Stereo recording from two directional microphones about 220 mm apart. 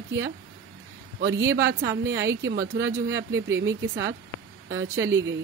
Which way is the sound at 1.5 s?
50° right (ahead or behind).